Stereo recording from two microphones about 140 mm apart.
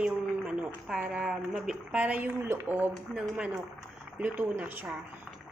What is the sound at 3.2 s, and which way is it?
Speech, centre (ahead or behind).